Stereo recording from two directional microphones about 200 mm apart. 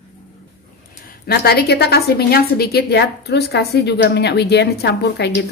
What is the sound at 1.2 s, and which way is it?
A woman's voice, 50° left (ahead or behind).